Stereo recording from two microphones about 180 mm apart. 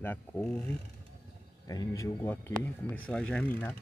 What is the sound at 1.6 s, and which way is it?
Speech, 20° left (ahead or behind).